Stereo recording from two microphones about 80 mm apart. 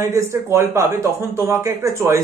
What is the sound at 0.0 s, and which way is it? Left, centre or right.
A man's voice, right.